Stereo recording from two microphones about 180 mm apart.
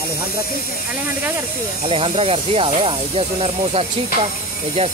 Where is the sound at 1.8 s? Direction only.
30° right (ahead or behind).